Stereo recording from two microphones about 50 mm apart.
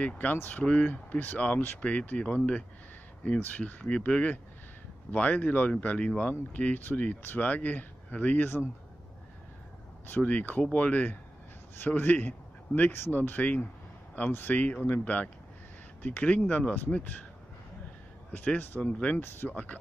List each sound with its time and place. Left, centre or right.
0.0 s speech: left
10.0 s speech: left
12.9 s speech: left
18.3 s speech: left
19.2 s speech: left
19.5 s speech: left